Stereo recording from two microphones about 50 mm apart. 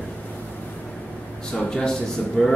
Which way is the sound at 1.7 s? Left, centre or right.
Centre.